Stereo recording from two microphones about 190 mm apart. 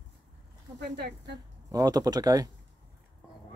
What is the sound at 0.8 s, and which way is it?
Speech, 55° right (ahead or behind).